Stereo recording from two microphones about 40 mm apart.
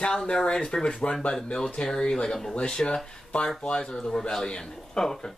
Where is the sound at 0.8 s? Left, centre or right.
Left.